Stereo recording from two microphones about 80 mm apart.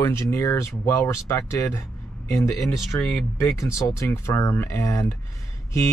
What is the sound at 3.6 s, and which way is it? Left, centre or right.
Speech, left.